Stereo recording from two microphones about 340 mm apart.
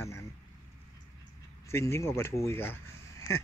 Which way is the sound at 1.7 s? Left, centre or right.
Centre.